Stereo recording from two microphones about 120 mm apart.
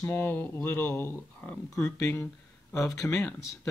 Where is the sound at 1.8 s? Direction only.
20° left (ahead or behind).